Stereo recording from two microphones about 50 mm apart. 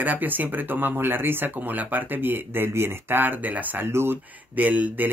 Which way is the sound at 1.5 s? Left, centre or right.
Right.